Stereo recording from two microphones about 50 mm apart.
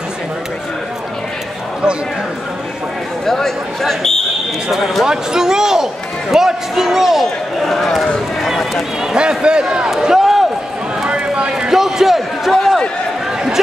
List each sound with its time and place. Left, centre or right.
3.3 s speech: centre
5.0 s speech: centre
7.6 s speech: centre
9.1 s a man's voice: centre
11.1 s a sound: right
11.7 s a man's voice: centre